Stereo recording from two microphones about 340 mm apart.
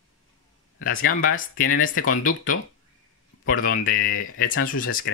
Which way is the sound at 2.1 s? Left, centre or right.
Left.